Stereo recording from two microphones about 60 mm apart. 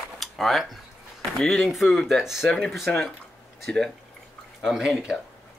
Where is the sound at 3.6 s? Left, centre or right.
Centre.